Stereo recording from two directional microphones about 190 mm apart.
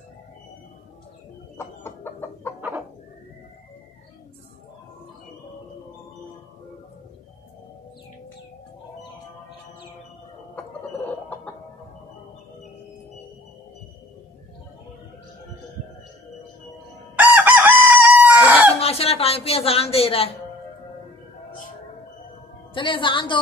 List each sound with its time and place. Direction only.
1.6 s chicken: 15° left (ahead or behind)
17.1 s chicken: 10° right (ahead or behind)
18.8 s speech: 30° left (ahead or behind)
22.8 s a woman's voice: 25° left (ahead or behind)